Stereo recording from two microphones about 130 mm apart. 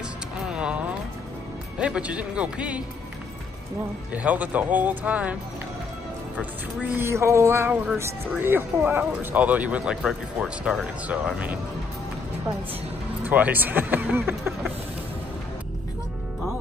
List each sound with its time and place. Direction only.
0.5 s a sound: 10° right (ahead or behind)
1.8 s speech: 10° right (ahead or behind)
4.1 s speech: 10° right (ahead or behind)
13.2 s speech: 10° right (ahead or behind)